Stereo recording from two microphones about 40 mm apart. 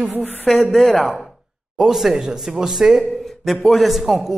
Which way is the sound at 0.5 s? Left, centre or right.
Centre.